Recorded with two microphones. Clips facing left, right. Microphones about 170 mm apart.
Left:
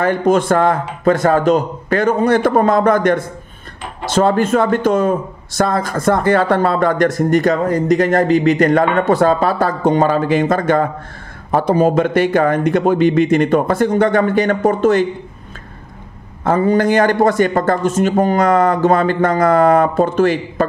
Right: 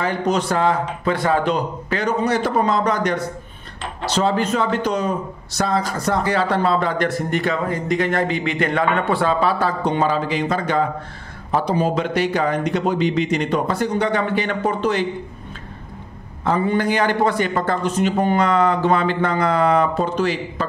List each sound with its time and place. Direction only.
0.0 s speech: 50° left (ahead or behind)
16.4 s speech: 45° left (ahead or behind)